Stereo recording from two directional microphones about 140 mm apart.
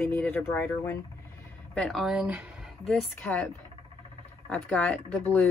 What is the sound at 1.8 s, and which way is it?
Speech, centre (ahead or behind).